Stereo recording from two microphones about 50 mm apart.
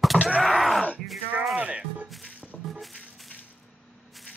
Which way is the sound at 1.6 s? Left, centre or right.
Right.